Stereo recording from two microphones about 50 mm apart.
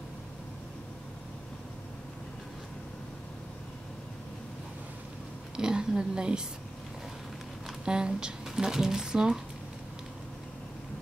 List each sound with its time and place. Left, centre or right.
5.6 s speech: centre
7.8 s speech: centre